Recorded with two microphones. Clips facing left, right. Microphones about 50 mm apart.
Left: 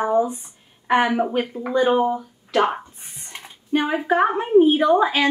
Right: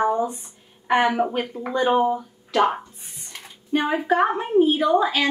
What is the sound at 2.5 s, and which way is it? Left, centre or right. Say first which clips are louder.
A woman's voice: even; centre.